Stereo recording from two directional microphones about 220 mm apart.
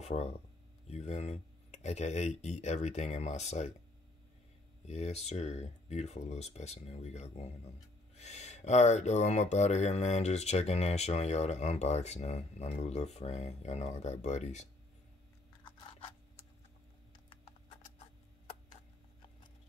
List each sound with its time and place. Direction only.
0.0 s speech: 30° left (ahead or behind)
4.8 s speech: 30° left (ahead or behind)